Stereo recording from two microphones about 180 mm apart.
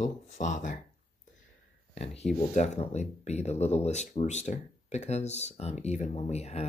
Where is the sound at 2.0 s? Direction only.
40° left (ahead or behind).